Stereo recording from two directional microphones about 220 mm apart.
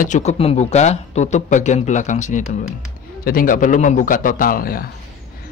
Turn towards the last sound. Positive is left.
turn(degrees=40)  # may be behind; listen again after turning